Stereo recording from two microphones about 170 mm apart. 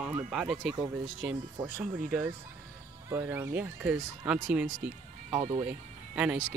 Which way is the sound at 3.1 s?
10° right (ahead or behind).